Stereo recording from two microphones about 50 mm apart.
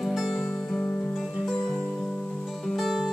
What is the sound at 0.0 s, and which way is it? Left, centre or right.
Music, centre.